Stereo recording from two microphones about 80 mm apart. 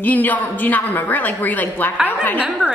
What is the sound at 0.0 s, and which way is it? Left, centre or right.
A woman's voice, left.